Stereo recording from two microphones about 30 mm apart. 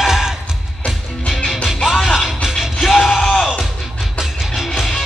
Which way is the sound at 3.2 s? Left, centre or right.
Left.